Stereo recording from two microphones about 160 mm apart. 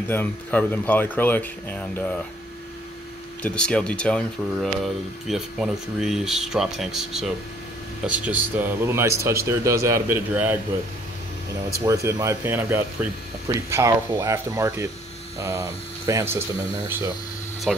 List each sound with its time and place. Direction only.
0.1 s speech: 10° left (ahead or behind)
3.4 s speech: 5° left (ahead or behind); by 10.6 s 10° right (ahead or behind)
11.8 s speech: 20° right (ahead or behind)
17.7 s speech: centre (ahead or behind)